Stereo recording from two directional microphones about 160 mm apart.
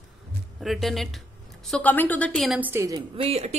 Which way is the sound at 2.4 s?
10° right (ahead or behind).